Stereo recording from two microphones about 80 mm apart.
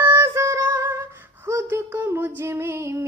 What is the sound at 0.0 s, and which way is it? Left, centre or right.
Music, right.